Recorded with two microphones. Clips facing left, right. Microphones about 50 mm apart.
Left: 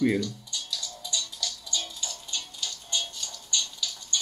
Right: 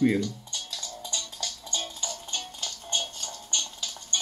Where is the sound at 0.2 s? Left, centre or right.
Right.